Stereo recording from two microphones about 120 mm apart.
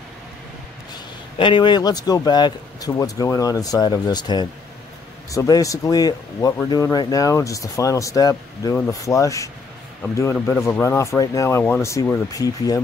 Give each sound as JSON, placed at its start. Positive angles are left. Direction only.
{"t": 0.9, "sound": "a man's voice", "side_deg": 40}
{"t": 10.3, "sound": "speech", "side_deg": 10}